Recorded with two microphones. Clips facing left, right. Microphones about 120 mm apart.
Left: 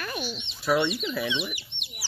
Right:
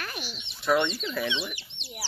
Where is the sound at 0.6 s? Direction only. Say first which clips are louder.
Even; 5° left (ahead or behind).